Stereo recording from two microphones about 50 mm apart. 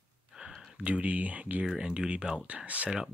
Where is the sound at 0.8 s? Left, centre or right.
Right.